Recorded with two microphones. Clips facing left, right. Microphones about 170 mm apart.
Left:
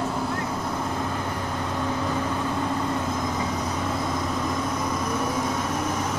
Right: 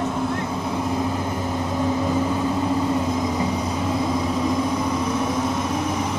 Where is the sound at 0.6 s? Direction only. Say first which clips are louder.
Right 5 dB; 10° right (ahead or behind).